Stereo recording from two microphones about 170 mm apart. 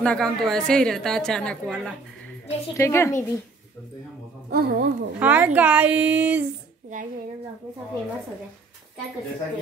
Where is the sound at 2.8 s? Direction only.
15° left (ahead or behind).